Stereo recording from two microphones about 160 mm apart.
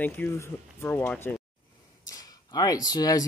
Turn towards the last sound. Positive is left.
turn(degrees=25)  # may be behind; listen again after turning